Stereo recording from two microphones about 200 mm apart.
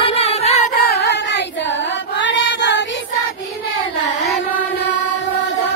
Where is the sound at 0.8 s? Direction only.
55° left (ahead or behind).